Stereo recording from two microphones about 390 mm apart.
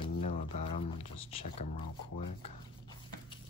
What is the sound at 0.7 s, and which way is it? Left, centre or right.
Speech, centre.